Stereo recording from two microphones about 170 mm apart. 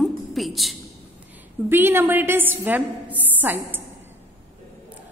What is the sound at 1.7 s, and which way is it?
A woman's voice, 15° right (ahead or behind).